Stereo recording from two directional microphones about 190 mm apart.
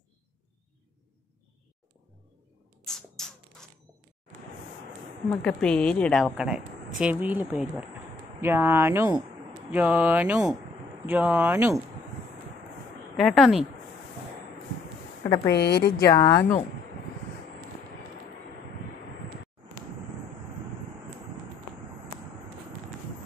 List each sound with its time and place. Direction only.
2.8 s a sound: 5° left (ahead or behind)
5.3 s a woman's voice: 5° left (ahead or behind)
13.1 s a woman's voice: centre (ahead or behind)
15.4 s a woman's voice: 60° left (ahead or behind)
16.1 s speech: 15° left (ahead or behind)